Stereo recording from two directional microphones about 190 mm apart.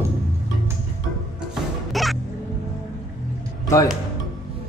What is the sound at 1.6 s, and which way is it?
Music, centre (ahead or behind).